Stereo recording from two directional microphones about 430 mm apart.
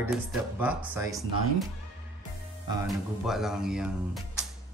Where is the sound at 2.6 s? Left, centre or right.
Centre.